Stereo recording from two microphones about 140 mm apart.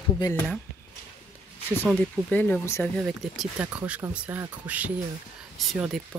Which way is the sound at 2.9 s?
Centre (ahead or behind).